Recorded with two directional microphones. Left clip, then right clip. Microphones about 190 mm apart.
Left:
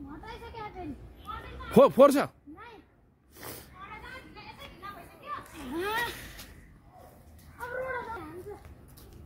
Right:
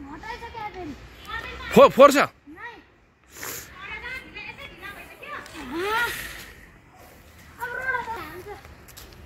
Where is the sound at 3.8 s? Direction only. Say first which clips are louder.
Right 11 dB; 70° left (ahead or behind).